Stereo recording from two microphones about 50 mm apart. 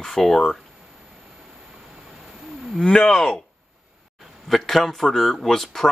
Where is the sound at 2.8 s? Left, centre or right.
Centre.